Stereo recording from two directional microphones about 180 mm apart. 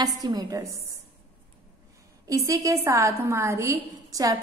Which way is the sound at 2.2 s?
20° right (ahead or behind).